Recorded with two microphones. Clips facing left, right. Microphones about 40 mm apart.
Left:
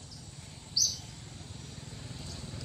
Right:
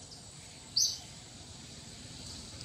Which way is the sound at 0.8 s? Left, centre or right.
Centre.